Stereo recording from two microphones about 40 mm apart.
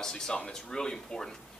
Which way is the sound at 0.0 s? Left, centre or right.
Centre.